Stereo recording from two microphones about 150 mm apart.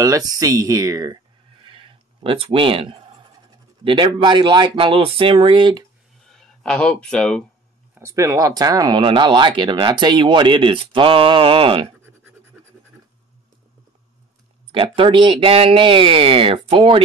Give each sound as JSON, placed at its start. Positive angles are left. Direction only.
{"t": 0.0, "sound": "speech", "side_deg": -25}
{"t": 6.2, "sound": "speech", "side_deg": 5}
{"t": 7.9, "sound": "speech", "side_deg": -20}
{"t": 14.7, "sound": "speech", "side_deg": -35}